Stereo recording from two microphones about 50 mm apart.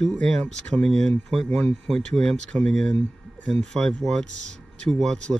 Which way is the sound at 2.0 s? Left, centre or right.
Centre.